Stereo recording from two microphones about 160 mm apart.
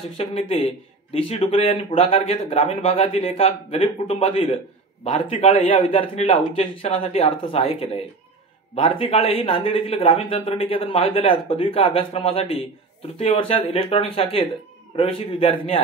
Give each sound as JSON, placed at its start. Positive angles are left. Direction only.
{"t": 0.2, "sound": "speech", "side_deg": 40}